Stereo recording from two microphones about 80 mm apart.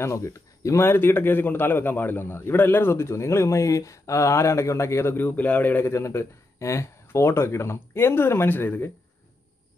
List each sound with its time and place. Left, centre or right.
0.0 s a man's voice: left
5.9 s a man's voice: left